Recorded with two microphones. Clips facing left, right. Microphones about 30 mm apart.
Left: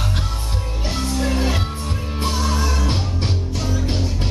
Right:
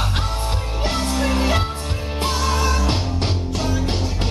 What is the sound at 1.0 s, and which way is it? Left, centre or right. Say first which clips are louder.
Music: left 1 dB; right.